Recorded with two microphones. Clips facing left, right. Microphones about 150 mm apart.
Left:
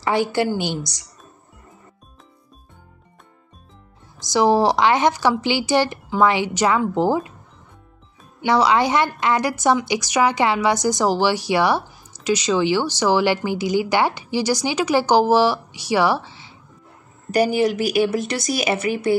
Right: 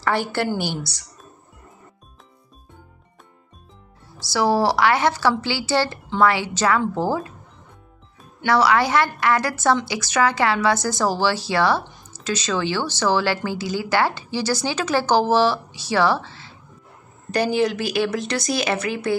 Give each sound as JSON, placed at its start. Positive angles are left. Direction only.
{"t": 0.0, "sound": "a woman's voice", "side_deg": 15}
{"t": 4.2, "sound": "a woman's voice", "side_deg": 15}
{"t": 8.4, "sound": "a woman's voice", "side_deg": 15}